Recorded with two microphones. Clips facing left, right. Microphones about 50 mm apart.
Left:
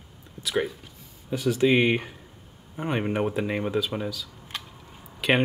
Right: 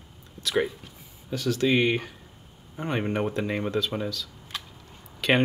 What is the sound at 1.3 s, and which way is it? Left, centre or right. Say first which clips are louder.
Speech: left 2 dB; centre.